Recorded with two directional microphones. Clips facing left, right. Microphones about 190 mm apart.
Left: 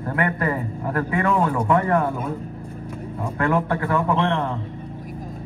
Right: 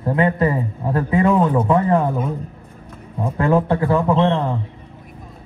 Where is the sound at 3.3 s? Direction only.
20° right (ahead or behind).